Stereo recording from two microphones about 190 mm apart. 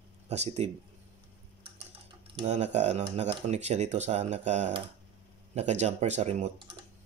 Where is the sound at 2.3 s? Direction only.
35° right (ahead or behind).